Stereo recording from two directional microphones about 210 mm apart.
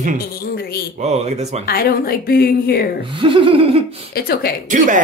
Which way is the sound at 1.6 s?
45° left (ahead or behind).